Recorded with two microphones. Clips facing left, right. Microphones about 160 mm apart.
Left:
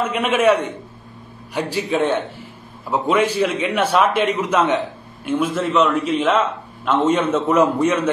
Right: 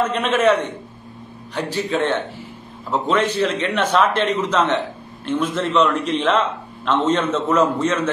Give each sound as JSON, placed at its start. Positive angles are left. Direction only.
{"t": 0.0, "sound": "a man's voice", "side_deg": 10}